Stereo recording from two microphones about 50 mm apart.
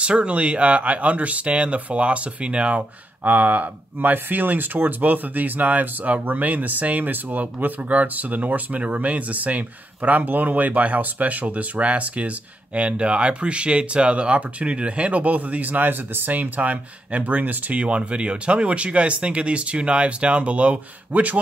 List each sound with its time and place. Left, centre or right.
0.0 s speech: right